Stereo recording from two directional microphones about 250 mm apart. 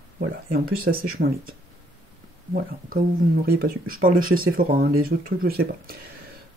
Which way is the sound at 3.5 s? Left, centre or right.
Right.